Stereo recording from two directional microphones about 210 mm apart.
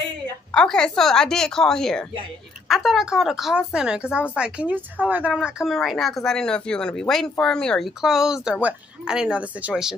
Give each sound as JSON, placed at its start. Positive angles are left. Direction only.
{"t": 0.5, "sound": "speech", "side_deg": 5}